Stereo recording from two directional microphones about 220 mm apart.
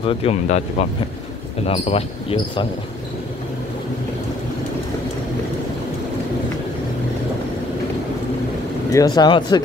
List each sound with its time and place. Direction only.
0.0 s speech: 25° left (ahead or behind)
8.9 s speech: 20° left (ahead or behind)